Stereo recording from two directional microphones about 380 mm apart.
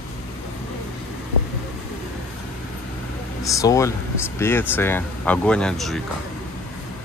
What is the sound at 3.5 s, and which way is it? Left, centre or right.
Speech, centre.